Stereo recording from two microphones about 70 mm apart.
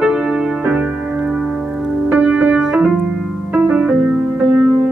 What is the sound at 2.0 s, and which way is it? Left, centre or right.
Music, centre.